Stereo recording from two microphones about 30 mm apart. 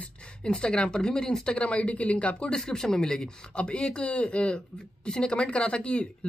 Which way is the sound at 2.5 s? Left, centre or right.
Left.